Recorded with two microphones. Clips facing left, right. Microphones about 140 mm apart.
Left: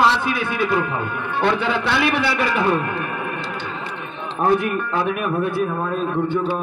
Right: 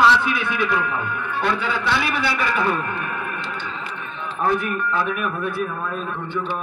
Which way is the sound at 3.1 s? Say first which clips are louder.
Left 2 dB; 35° left (ahead or behind).